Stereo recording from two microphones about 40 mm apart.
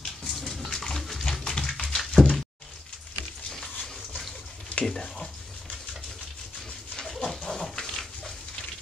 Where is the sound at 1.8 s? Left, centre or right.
Centre.